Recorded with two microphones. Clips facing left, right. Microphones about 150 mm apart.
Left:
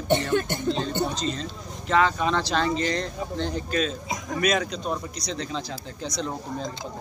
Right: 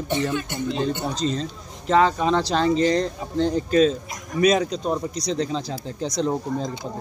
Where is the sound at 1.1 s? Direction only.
35° right (ahead or behind).